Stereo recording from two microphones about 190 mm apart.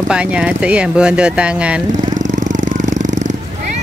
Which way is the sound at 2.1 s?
40° right (ahead or behind).